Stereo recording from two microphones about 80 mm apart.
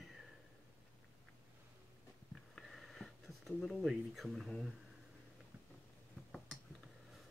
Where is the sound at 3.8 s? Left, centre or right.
Centre.